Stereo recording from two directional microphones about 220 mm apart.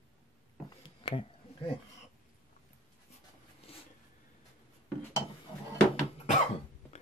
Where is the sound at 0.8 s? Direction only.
25° left (ahead or behind).